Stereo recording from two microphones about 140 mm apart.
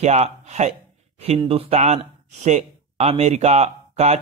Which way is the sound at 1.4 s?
40° right (ahead or behind).